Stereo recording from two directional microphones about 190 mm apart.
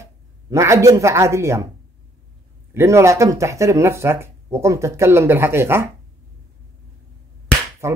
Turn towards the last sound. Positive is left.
turn(degrees=-15)  # may be behind; listen again after turning